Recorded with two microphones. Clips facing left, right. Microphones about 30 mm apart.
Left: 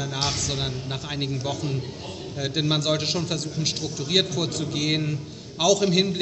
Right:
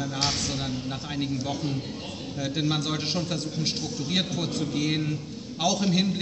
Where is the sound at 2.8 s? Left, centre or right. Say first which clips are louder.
Left 4 dB; left.